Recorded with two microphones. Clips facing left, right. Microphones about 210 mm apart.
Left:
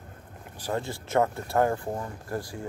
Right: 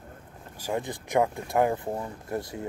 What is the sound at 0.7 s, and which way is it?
Speech, 15° right (ahead or behind).